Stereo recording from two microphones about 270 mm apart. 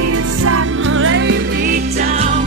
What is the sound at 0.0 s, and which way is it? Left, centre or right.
Music, right.